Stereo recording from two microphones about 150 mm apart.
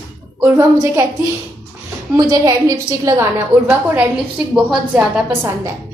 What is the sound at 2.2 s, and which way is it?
A woman's voice, 25° right (ahead or behind).